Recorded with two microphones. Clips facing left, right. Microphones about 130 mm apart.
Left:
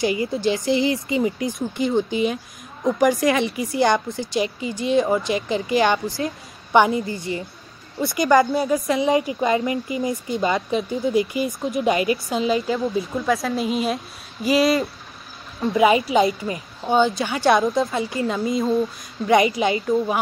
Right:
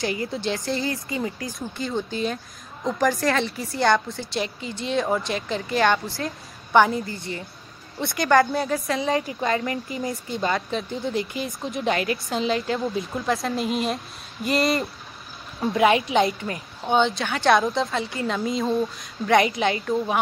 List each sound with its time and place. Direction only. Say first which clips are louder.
0.0 s speech: left 5 dB; 5° left (ahead or behind)
0.7 s a woman's voice: left 7 dB; 20° left (ahead or behind)
8.0 s speech: left 2 dB; 5° left (ahead or behind)
8.7 s speech: left 6 dB; 15° left (ahead or behind)